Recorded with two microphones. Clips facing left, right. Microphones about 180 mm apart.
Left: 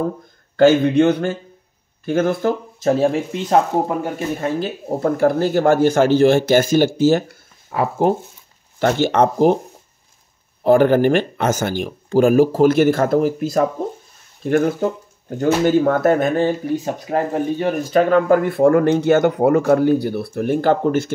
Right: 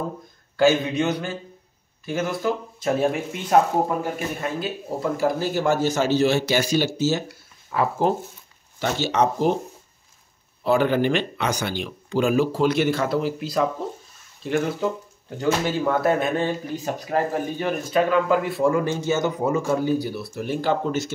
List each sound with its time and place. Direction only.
0.6 s speech: 55° left (ahead or behind)
3.0 s speech: 30° left (ahead or behind)
4.8 s speech: 55° left (ahead or behind)
7.7 s speech: 25° left (ahead or behind)
9.0 s speech: 55° left (ahead or behind)
10.6 s speech: 50° left (ahead or behind)
16.6 s speech: 20° left (ahead or behind)
17.9 s speech: 50° left (ahead or behind)